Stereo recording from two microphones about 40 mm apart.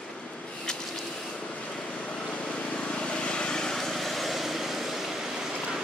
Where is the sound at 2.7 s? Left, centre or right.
Left.